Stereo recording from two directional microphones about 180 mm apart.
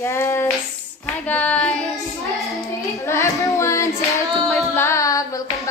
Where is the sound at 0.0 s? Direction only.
15° left (ahead or behind).